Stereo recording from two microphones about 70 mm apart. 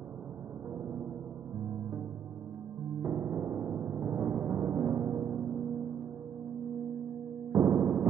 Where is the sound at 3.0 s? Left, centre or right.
Right.